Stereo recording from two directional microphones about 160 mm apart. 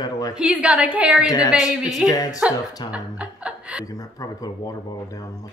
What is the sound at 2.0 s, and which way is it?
Speech, 20° left (ahead or behind).